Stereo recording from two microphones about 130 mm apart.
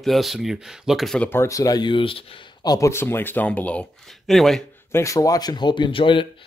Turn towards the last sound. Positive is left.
turn(degrees=40)  # may be behind; listen again after turning